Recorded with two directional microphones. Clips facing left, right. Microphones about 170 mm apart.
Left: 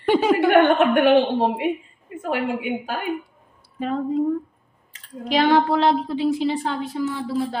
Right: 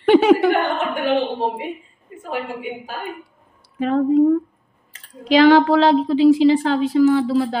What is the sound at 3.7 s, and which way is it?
Humming, 75° right (ahead or behind).